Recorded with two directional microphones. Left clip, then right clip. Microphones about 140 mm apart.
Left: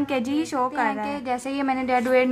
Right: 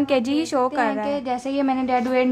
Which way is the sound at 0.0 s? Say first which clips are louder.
Right 4 dB; 40° right (ahead or behind).